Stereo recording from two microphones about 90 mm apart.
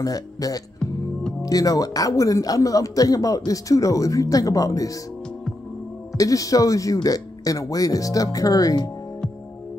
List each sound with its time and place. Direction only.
0.0 s speech: 40° left (ahead or behind)
6.1 s speech: 40° left (ahead or behind)